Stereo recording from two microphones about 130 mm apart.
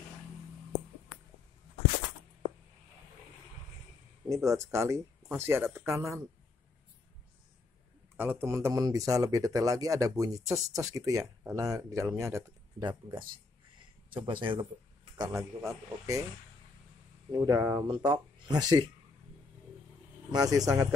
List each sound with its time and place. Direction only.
4.3 s speech: 25° right (ahead or behind)
8.2 s speech: 15° right (ahead or behind)
14.1 s speech: 40° right (ahead or behind)
15.1 s speech: 25° right (ahead or behind)
17.3 s speech: 25° right (ahead or behind)
17.8 s speech: 35° right (ahead or behind)
20.2 s speech: 30° right (ahead or behind)